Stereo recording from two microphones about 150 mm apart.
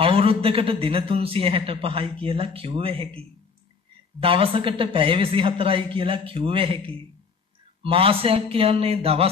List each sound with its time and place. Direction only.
0.0 s a man's voice: 40° right (ahead or behind)